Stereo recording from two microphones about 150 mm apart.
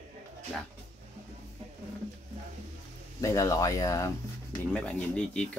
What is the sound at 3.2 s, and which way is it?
Speech, 20° left (ahead or behind).